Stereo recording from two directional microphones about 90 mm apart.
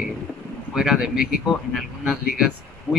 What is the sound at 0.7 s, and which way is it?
Speech, 5° right (ahead or behind).